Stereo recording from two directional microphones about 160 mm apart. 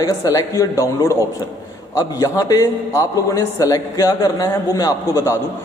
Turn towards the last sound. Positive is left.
turn(degrees=15)  # may be behind; listen again after turning